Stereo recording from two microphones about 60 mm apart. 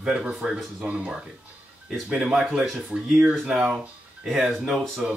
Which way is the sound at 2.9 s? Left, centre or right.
Centre.